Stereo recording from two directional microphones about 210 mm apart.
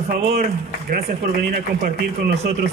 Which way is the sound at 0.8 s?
45° right (ahead or behind).